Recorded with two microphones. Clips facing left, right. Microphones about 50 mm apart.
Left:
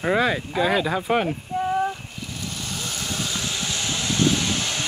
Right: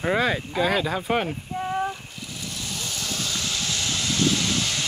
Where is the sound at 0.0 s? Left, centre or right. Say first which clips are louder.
Left 2 dB; centre.